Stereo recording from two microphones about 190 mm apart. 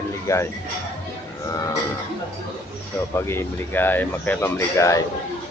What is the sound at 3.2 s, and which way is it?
Speech, 15° left (ahead or behind).